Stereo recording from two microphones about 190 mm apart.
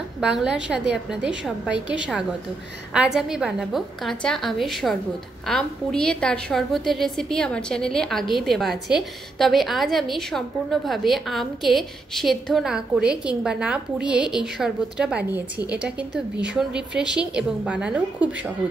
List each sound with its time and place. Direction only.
0.2 s a woman's voice: 5° right (ahead or behind)